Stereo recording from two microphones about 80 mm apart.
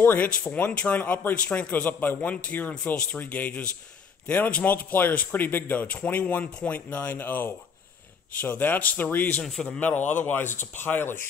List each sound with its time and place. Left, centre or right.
0.0 s speech: left
9.4 s a man's voice: centre
9.7 s speech: left